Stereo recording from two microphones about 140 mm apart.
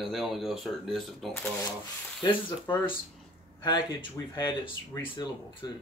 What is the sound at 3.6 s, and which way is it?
Speech, 35° left (ahead or behind).